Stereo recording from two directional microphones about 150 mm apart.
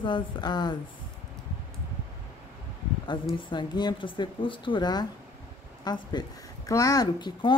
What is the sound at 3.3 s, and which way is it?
A woman's voice, 30° left (ahead or behind).